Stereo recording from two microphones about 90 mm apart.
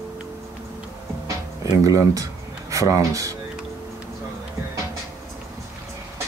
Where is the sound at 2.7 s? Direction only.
35° right (ahead or behind).